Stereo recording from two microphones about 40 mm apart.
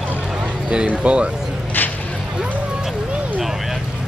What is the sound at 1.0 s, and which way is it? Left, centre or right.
Speech, right.